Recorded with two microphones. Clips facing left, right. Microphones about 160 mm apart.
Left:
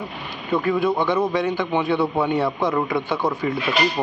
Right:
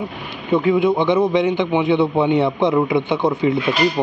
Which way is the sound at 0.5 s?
20° right (ahead or behind).